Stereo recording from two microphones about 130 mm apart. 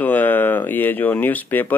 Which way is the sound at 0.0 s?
15° left (ahead or behind).